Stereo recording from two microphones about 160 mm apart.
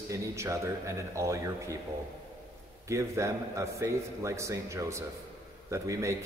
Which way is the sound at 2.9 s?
20° right (ahead or behind).